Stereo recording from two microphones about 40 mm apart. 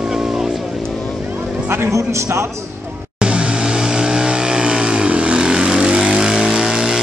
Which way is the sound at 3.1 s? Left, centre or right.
Right.